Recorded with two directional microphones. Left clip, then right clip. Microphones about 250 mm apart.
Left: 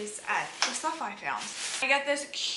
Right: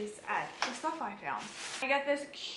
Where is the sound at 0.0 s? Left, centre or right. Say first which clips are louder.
Left 4 dB; centre.